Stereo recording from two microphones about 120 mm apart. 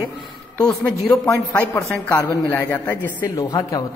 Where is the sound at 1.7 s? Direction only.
20° left (ahead or behind).